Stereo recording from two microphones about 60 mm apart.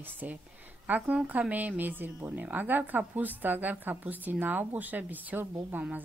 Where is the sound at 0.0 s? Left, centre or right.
Right.